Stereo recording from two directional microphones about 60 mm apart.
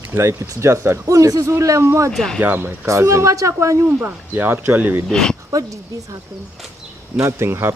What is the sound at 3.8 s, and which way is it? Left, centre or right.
Speech, right.